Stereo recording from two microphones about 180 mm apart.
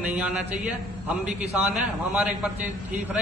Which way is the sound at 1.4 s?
5° right (ahead or behind).